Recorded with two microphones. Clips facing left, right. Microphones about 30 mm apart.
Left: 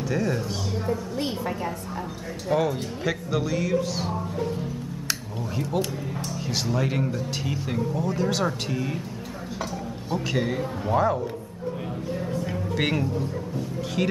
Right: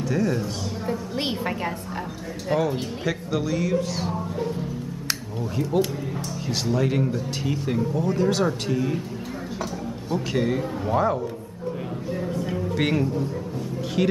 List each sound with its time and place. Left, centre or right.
0.1 s speech: centre
1.1 s a woman's voice: right
2.5 s speech: right
3.0 s speech: centre
5.6 s speech: centre
10.1 s speech: centre
12.2 s speech: centre